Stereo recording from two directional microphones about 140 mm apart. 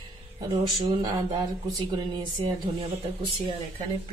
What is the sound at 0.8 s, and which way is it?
A woman's voice, 40° right (ahead or behind).